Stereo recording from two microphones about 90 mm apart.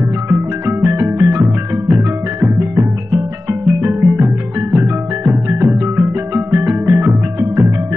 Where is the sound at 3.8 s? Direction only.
20° right (ahead or behind).